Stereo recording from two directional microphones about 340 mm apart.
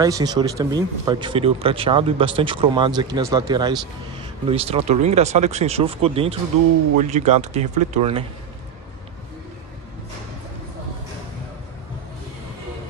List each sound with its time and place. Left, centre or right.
0.0 s speech: centre